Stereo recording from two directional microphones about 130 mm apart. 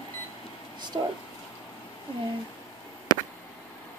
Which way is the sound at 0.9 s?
25° right (ahead or behind).